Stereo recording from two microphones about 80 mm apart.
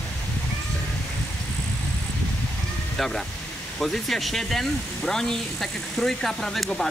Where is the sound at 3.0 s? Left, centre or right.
Centre.